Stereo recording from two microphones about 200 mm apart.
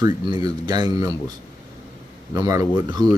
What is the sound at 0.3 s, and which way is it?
Speech, 20° right (ahead or behind).